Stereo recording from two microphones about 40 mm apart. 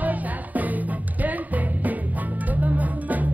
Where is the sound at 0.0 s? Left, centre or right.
Right.